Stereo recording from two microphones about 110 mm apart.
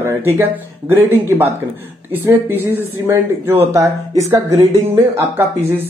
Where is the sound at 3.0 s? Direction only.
20° right (ahead or behind).